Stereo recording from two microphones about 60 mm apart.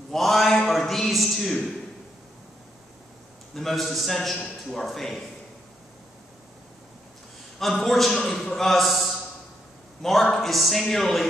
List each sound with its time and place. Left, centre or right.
0.1 s a sound: centre
3.5 s a man's voice: centre
7.5 s a man's voice: centre
8.6 s a man's voice: centre